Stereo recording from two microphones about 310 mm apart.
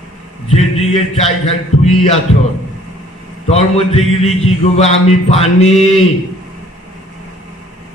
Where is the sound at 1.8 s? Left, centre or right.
Centre.